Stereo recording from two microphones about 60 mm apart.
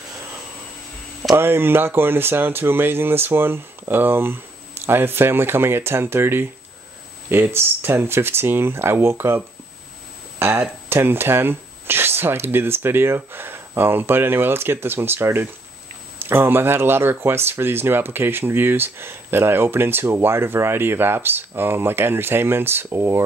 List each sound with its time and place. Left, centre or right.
1.3 s speech: right
7.5 s speech: right
10.4 s speech: right